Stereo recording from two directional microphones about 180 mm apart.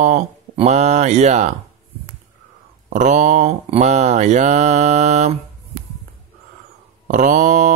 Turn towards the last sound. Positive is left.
turn(degrees=-45)  # may be behind; listen again after turning